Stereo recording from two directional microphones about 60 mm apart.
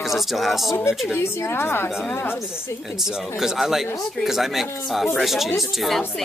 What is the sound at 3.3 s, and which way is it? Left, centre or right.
Speech, centre.